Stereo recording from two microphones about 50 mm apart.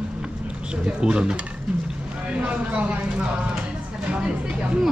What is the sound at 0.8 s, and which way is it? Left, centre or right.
Speech, centre.